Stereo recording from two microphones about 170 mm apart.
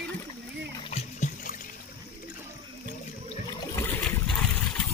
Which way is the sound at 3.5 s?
15° left (ahead or behind).